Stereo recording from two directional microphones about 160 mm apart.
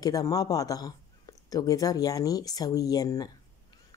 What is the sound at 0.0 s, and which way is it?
Speech, 20° left (ahead or behind).